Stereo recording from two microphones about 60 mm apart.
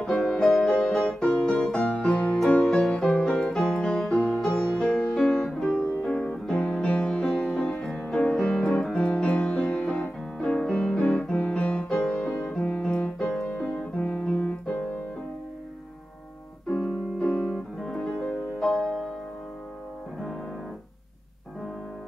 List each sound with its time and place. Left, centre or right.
0.0 s music: centre
1.8 s music: centre
2.6 s music: centre
5.7 s music: centre
7.2 s music: centre
12.8 s piano: centre
13.9 s music: left
17.2 s music: centre